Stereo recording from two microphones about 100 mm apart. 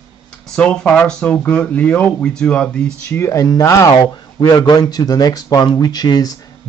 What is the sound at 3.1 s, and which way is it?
Speech, 25° left (ahead or behind).